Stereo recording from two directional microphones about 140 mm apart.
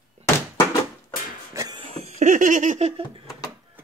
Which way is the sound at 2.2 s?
65° right (ahead or behind).